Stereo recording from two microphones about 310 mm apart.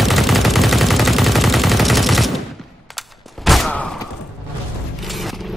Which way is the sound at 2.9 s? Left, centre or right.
Centre.